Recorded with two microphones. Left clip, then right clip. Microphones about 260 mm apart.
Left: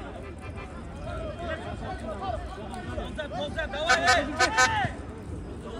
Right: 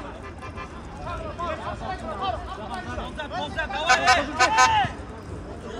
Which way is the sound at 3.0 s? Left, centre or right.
Centre.